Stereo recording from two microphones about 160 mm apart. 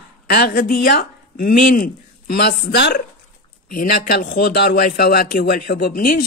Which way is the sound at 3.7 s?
60° left (ahead or behind).